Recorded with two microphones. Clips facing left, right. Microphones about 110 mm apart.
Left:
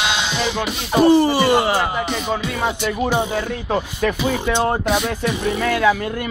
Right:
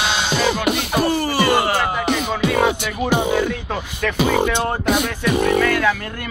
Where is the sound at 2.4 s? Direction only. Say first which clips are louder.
Right 5 dB; 70° right (ahead or behind).